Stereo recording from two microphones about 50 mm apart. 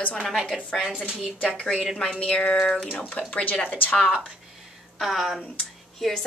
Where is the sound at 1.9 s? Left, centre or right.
Centre; by 4.1 s left.